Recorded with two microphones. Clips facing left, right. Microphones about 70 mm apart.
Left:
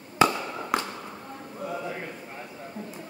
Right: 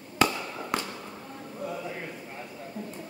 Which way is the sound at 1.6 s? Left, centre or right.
Centre.